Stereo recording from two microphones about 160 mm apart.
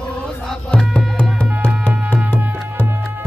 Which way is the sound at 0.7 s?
5° left (ahead or behind).